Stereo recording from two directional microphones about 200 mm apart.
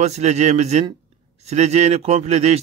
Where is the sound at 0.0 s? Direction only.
35° right (ahead or behind).